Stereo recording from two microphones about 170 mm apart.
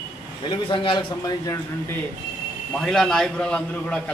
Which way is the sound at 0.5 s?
30° left (ahead or behind).